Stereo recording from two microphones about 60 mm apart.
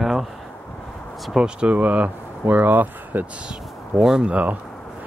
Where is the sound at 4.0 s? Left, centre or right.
Centre.